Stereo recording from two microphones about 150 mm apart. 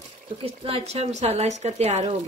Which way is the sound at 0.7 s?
40° right (ahead or behind).